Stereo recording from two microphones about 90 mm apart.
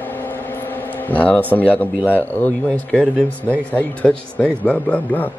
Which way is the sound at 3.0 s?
10° left (ahead or behind).